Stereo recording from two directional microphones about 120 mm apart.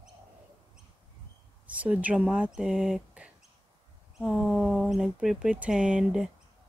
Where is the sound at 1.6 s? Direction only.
10° right (ahead or behind).